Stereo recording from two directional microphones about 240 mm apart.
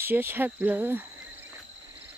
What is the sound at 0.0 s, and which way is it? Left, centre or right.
Speech, centre.